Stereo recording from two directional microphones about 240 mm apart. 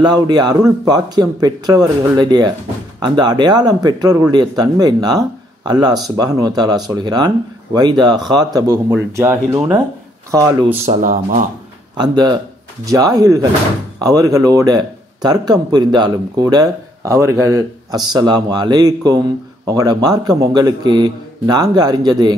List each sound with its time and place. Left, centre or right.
0.0 s speech: centre
10.9 s speech: right
12.0 s speech: centre